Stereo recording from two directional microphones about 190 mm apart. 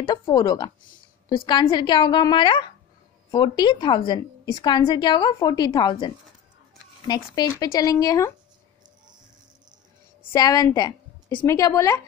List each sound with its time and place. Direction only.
0.0 s a woman's voice: 20° left (ahead or behind)
7.3 s a woman's voice: 20° left (ahead or behind)
10.3 s a woman's voice: 20° left (ahead or behind)